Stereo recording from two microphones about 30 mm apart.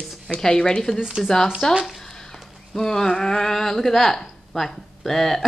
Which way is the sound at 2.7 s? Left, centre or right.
Centre.